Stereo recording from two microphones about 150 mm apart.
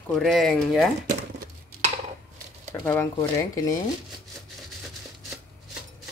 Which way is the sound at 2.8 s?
15° left (ahead or behind).